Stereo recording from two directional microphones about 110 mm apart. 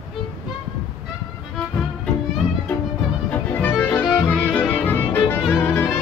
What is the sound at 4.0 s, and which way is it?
Music, 5° right (ahead or behind).